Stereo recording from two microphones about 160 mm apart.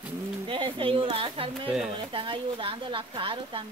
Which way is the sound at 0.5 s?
35° right (ahead or behind).